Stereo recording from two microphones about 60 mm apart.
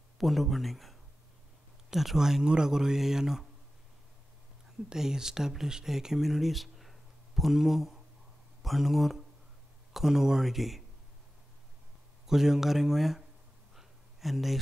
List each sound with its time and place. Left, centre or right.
0.2 s speech: centre
4.8 s speech: centre
12.3 s speech: centre
13.7 s a sound: centre